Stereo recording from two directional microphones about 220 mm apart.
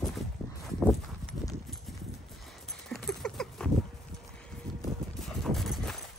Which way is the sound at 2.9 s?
Centre (ahead or behind).